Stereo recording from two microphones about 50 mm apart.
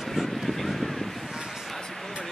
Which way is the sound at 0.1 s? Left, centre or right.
Centre.